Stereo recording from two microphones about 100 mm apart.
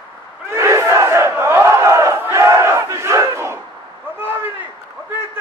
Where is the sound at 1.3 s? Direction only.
25° right (ahead or behind).